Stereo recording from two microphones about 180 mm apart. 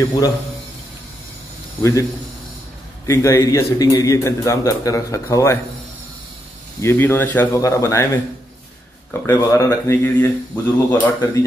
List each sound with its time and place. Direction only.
1.8 s a man's voice: 15° left (ahead or behind)
3.1 s a man's voice: 15° left (ahead or behind)
6.8 s a man's voice: 15° left (ahead or behind)
9.2 s a man's voice: 15° left (ahead or behind)